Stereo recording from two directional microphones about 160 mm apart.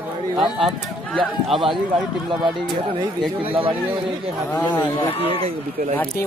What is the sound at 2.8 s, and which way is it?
Speech, 30° right (ahead or behind).